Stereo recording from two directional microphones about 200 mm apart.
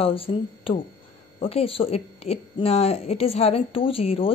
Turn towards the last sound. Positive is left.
turn(degrees=30)  # may be behind; listen again after turning